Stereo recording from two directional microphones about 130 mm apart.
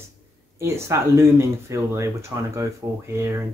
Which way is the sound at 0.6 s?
20° right (ahead or behind).